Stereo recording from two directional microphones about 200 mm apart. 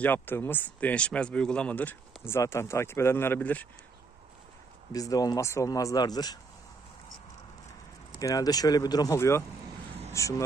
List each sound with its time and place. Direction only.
0.0 s speech: 10° left (ahead or behind)
4.9 s speech: 15° left (ahead or behind)
8.2 s speech: 15° left (ahead or behind)